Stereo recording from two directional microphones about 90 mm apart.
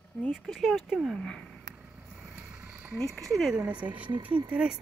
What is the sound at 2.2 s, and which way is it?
Vehicle, 25° right (ahead or behind).